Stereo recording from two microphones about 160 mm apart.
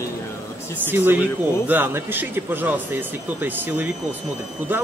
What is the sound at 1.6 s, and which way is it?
A man's voice, 10° right (ahead or behind).